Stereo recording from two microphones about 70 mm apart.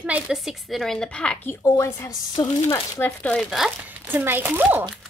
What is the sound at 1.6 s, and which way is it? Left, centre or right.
Speech, left.